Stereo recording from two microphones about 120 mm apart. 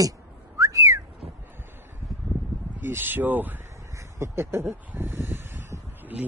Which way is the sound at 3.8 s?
25° right (ahead or behind).